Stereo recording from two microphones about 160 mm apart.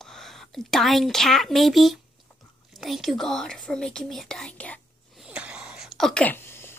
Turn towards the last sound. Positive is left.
turn(degrees=15)  # may be behind; listen again after turning